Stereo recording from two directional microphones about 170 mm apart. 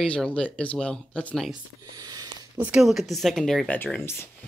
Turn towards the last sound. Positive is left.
turn(degrees=15)  # may be behind; listen again after turning